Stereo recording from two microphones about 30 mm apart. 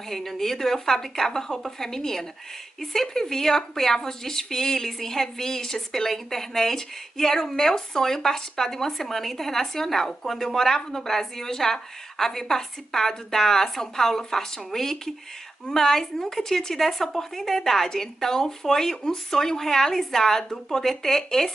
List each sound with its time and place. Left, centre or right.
0.1 s speech: centre